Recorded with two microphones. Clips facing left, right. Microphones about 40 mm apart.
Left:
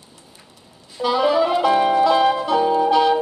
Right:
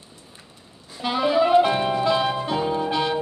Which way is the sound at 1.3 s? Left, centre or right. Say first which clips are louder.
Right 1 dB; right.